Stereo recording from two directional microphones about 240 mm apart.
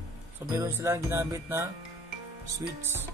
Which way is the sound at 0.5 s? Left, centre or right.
Centre.